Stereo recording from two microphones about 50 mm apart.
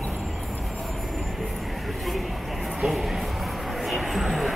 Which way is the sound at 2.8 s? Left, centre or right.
Centre.